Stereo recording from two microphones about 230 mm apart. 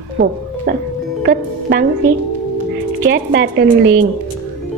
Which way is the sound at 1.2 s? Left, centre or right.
Right.